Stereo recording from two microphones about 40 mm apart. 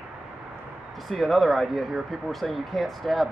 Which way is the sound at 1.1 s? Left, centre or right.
Centre.